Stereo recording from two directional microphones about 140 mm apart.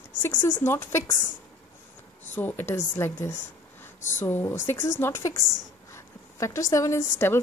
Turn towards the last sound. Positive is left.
turn(degrees=20)  # may be behind; listen again after turning